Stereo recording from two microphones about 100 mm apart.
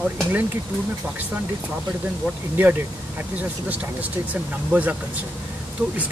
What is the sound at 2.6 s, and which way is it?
Speech, 15° right (ahead or behind).